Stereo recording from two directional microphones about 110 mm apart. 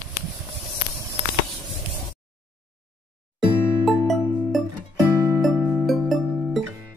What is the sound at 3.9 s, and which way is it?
Music, centre (ahead or behind).